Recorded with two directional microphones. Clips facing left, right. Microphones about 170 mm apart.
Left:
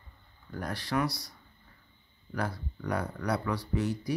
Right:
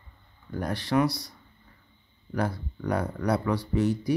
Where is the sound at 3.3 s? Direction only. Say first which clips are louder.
Right 5 dB; 25° right (ahead or behind).